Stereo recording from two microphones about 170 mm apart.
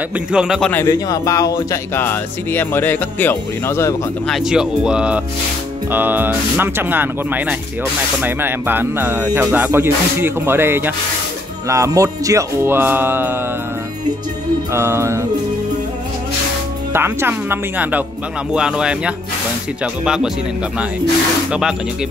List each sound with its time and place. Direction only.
0.3 s speech: 5° right (ahead or behind)
0.7 s speech: 15° left (ahead or behind)
4.3 s speech: centre (ahead or behind)
14.7 s speech: 15° right (ahead or behind)
16.9 s speech: 15° right (ahead or behind)
21.5 s speech: 5° right (ahead or behind)